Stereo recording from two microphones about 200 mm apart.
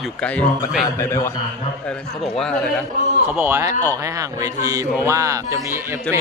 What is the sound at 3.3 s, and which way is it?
A man's voice, 10° right (ahead or behind).